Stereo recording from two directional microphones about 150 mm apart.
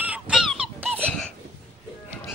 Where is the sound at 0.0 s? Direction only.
5° right (ahead or behind).